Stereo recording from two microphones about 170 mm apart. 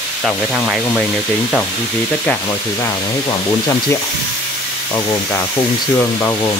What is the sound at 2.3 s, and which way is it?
Speech, 5° left (ahead or behind).